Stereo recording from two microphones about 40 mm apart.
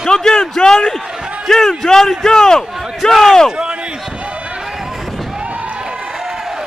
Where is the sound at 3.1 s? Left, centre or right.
Centre.